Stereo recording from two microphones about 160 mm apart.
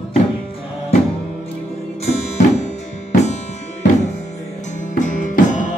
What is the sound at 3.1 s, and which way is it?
Music, 45° left (ahead or behind).